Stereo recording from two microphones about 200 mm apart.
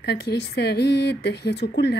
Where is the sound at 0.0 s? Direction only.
60° left (ahead or behind).